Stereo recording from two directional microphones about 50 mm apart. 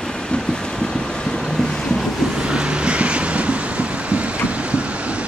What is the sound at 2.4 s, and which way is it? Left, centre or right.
Vehicle, centre.